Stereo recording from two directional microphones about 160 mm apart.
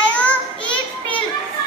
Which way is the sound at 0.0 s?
10° left (ahead or behind).